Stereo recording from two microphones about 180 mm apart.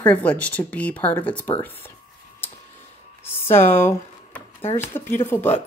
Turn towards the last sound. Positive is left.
turn(degrees=10)  # may be behind; listen again after turning